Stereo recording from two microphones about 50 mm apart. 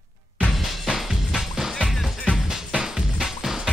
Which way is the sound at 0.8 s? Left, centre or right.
Centre.